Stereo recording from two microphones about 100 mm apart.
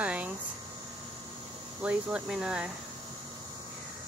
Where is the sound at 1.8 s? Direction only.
10° right (ahead or behind).